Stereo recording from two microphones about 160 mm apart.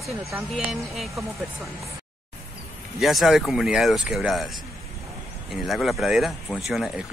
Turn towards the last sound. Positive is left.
turn(degrees=-5)  # may be behind; listen again after turning